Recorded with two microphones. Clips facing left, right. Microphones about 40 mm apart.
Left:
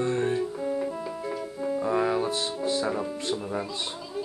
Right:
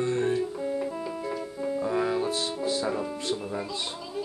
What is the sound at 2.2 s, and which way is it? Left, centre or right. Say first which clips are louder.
Music: even; left.